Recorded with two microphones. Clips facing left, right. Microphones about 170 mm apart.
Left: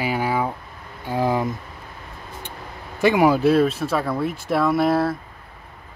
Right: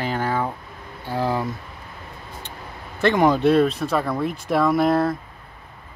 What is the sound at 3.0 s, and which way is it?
Speech, 10° left (ahead or behind).